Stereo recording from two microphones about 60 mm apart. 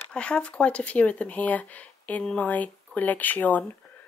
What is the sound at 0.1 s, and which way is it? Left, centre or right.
Speech, centre.